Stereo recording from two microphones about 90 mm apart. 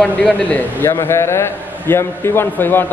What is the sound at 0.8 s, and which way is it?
A man's voice, 30° left (ahead or behind).